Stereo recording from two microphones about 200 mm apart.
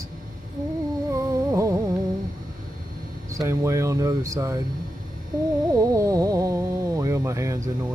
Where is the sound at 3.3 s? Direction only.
15° right (ahead or behind).